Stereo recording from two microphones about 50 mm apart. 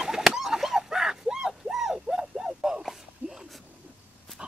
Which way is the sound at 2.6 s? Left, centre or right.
Centre.